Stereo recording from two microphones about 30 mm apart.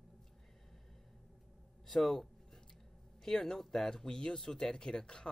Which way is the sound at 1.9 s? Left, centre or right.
Centre.